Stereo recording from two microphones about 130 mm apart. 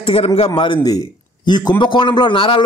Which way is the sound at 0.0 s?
45° left (ahead or behind).